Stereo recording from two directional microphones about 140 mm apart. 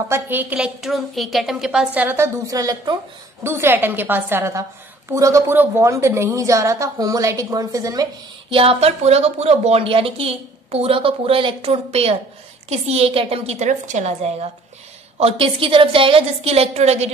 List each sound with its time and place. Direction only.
0.1 s a woman's voice: 15° right (ahead or behind); by 3.0 s 30° right (ahead or behind)
3.4 s a woman's voice: 15° right (ahead or behind)
8.5 s speech: 40° right (ahead or behind)